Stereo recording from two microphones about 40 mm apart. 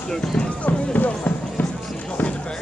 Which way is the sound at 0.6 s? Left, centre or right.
Left.